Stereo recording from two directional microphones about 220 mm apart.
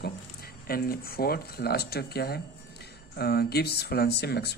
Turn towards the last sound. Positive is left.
turn(degrees=50)  # may be behind; listen again after turning